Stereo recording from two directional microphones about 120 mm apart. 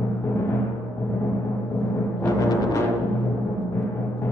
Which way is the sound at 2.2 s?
30° left (ahead or behind).